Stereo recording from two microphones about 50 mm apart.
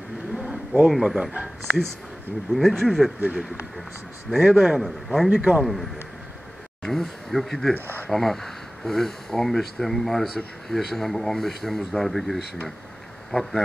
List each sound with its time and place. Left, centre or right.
0.4 s vehicle: right
1.0 s a man's voice: centre
2.5 s speech: centre
3.2 s speech: right
4.4 s a man's voice: centre
4.8 s speech: centre
5.3 s a man's voice: centre
5.6 s speech: centre